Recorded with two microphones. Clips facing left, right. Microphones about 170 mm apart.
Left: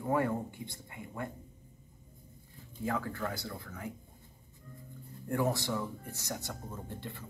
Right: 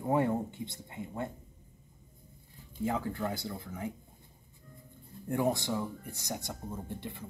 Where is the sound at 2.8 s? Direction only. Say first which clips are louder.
Right 2 dB; 20° right (ahead or behind).